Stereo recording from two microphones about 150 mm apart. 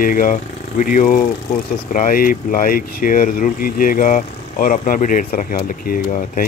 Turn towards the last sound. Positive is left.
turn(degrees=65)  # may be behind; listen again after turning